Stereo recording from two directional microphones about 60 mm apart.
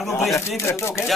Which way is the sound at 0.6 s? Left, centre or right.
Left.